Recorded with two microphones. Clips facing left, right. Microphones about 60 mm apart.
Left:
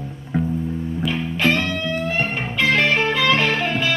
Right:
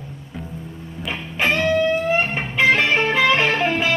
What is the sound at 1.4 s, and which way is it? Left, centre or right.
Music, right.